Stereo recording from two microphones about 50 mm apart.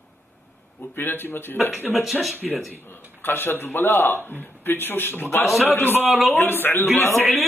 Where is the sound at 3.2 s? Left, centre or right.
Left.